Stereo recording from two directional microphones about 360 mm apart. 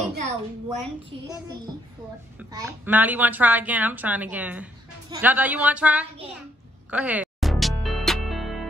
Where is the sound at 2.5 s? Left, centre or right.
Centre.